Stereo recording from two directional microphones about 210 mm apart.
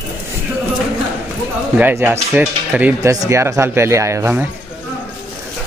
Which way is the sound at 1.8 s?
10° right (ahead or behind).